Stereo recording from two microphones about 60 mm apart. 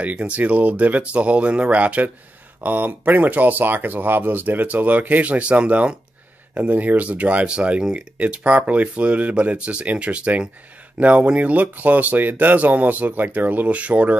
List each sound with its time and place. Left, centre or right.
0.0 s speech: right